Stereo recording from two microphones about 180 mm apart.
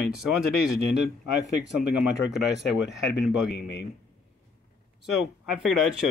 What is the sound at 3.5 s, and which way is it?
Speech, 65° left (ahead or behind).